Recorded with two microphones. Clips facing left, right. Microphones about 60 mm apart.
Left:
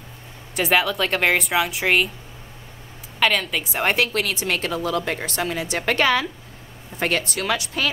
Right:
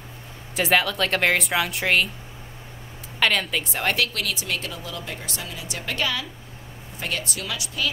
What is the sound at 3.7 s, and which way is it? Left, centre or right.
Speech, left.